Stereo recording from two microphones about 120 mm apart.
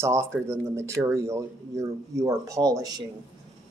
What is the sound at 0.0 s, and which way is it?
Speech, 20° right (ahead or behind).